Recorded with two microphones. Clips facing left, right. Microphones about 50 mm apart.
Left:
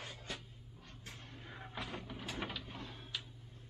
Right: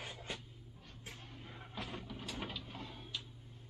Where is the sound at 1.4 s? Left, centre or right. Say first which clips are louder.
Left 2 dB; centre.